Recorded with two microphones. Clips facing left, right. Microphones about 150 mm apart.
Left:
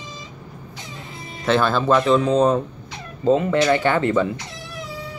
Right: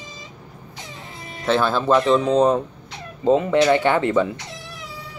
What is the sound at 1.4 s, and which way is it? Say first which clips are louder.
Speech: left 1 dB; 10° right (ahead or behind).